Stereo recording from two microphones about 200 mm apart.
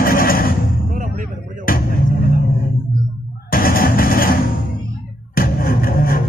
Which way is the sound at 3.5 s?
45° left (ahead or behind).